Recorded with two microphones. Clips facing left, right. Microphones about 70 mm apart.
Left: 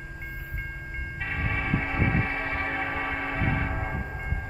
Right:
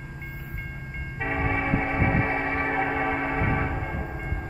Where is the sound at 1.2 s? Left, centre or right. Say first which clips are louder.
Right 5 dB; right.